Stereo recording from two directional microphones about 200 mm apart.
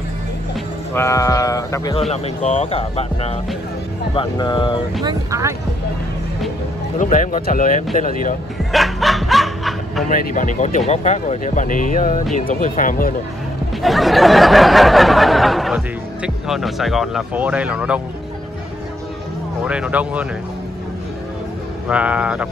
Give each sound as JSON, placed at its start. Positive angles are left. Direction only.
{"t": 0.9, "sound": "speech", "side_deg": 15}
{"t": 2.0, "sound": "speech", "side_deg": 30}
{"t": 5.0, "sound": "speech", "side_deg": -15}
{"t": 7.0, "sound": "speech", "side_deg": 40}
{"t": 8.7, "sound": "snicker", "side_deg": 0}
{"t": 10.0, "sound": "speech", "side_deg": 40}
{"t": 13.8, "sound": "a sound", "side_deg": 0}
{"t": 19.6, "sound": "speech", "side_deg": -5}
{"t": 21.8, "sound": "a sound", "side_deg": -5}